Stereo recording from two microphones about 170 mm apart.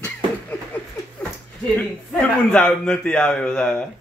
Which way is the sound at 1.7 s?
10° left (ahead or behind).